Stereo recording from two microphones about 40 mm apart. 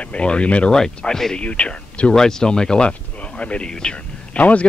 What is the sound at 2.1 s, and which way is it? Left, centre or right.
Speech, centre.